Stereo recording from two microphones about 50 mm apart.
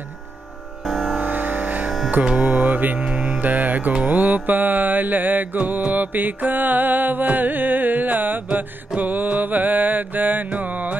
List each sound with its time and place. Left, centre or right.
0.8 s music: centre
1.2 s music: right
3.1 s music: centre
3.3 s music: right